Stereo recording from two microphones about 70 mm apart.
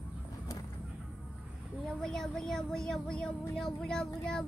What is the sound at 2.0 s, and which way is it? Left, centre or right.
Speech, centre.